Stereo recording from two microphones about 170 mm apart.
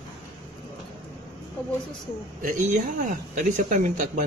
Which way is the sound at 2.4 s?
50° right (ahead or behind).